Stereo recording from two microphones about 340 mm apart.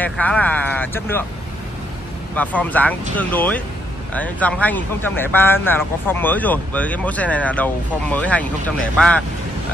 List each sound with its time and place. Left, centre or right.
0.0 s speech: centre
2.3 s speech: centre